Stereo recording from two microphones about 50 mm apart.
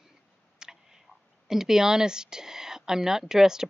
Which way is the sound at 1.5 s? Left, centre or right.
Centre.